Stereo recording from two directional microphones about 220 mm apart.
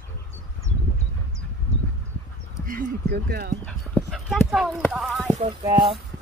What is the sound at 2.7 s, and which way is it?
Speech, 40° right (ahead or behind).